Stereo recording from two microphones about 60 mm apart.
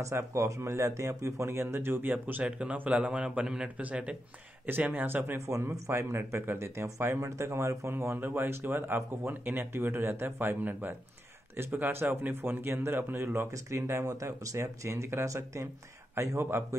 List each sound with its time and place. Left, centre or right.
0.0 s speech: right
2.4 s a man's voice: centre
4.6 s speech: right
8.2 s speech: right
13.5 s speech: right
16.2 s speech: right